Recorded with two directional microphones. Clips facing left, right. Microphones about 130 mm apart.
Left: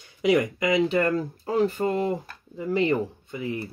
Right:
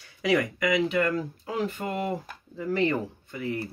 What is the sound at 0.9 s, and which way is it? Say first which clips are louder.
Speech: left 3 dB; 35° left (ahead or behind).